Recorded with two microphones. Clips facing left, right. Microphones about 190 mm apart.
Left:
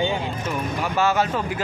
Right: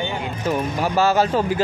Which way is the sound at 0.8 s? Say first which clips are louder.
Right 3 dB; 35° right (ahead or behind).